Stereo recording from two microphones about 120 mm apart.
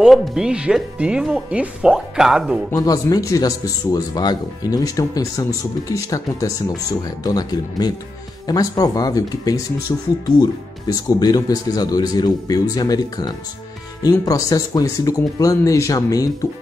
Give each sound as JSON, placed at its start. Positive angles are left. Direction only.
{"t": 0.0, "sound": "speech", "side_deg": 0}
{"t": 2.7, "sound": "speech", "side_deg": 30}